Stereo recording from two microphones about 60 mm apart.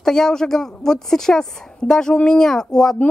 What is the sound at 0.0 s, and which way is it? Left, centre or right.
A woman's voice, centre.